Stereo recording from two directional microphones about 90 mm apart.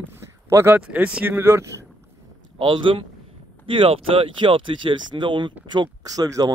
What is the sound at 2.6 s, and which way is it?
Speech, 70° right (ahead or behind).